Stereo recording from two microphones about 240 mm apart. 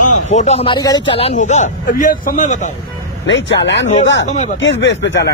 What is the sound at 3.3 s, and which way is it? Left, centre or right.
Speech, left.